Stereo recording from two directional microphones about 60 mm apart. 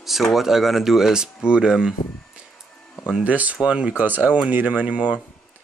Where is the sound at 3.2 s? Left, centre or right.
Right.